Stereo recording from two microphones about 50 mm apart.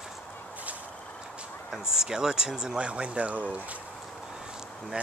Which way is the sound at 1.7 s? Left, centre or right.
Centre.